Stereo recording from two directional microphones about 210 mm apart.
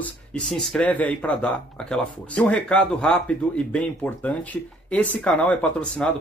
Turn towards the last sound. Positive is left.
turn(degrees=5)  # may be behind; listen again after turning